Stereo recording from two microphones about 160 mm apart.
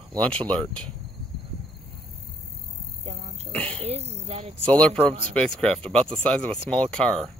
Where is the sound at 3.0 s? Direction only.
40° right (ahead or behind).